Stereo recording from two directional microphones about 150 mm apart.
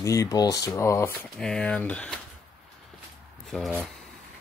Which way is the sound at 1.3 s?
5° left (ahead or behind).